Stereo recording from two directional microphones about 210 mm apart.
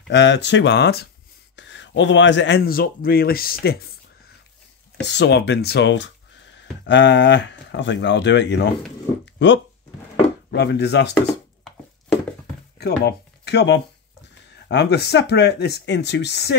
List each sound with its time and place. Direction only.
0.1 s speech: 55° left (ahead or behind)
5.0 s speech: 55° left (ahead or behind)
12.7 s speech: 50° left (ahead or behind)